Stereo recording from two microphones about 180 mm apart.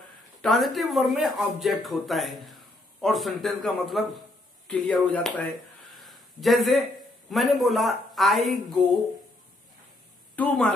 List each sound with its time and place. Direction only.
0.4 s a man's voice: centre (ahead or behind)
10.3 s speech: 10° left (ahead or behind)